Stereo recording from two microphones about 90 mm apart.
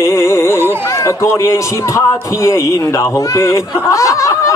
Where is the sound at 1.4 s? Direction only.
35° left (ahead or behind).